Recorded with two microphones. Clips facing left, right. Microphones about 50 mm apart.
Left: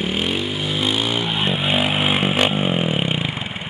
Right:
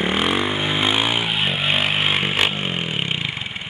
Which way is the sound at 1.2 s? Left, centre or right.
Centre.